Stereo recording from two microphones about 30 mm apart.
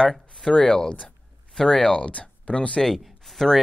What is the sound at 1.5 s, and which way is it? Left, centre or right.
Speech, centre.